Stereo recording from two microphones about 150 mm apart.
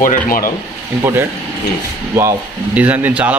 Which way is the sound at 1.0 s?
15° right (ahead or behind).